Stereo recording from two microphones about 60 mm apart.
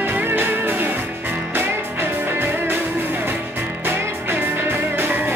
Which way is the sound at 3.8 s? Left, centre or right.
Right.